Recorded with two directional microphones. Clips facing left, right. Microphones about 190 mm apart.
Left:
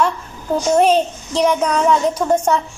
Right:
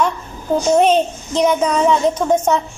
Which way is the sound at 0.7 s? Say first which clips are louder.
Even; centre (ahead or behind).